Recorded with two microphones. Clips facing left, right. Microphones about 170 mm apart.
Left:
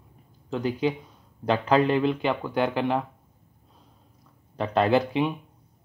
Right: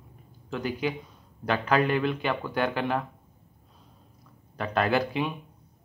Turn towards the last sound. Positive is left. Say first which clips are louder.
# left 4 dB
turn(degrees=25)  # may be behind; listen again after turning